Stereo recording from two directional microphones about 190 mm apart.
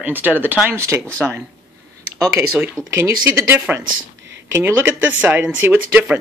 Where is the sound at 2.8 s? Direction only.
15° right (ahead or behind).